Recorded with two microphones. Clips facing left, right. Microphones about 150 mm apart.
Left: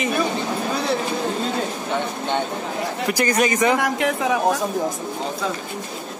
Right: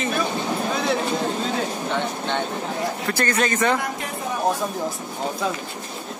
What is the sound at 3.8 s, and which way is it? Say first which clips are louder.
Speech: left 7 dB; 80° left.